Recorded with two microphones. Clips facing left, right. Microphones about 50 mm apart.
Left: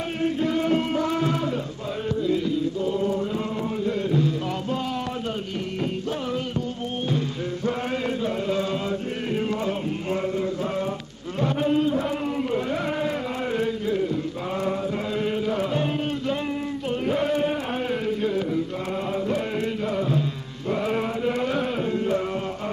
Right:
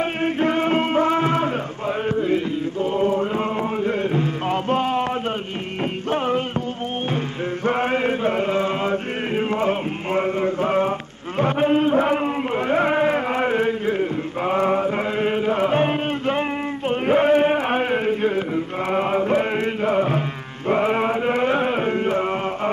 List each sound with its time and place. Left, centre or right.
0.2 s music: right
2.0 s chant: right
6.0 s music: right
7.6 s chant: right